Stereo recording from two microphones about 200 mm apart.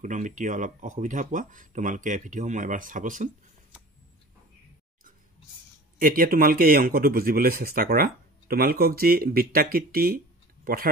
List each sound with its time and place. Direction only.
0.0 s speech: 40° right (ahead or behind)
5.9 s a man's voice: 45° right (ahead or behind)